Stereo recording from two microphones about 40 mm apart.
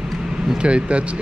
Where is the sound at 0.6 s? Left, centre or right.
Right.